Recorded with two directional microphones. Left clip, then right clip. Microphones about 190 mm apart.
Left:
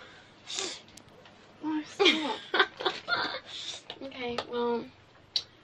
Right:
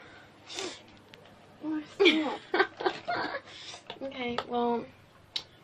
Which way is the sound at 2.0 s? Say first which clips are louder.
Right 1 dB; 20° left (ahead or behind).